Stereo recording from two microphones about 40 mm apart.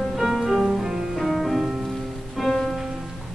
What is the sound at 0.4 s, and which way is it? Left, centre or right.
Music, centre.